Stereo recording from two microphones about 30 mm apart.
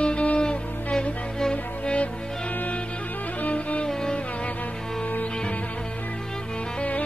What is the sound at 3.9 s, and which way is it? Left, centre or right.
Music, left.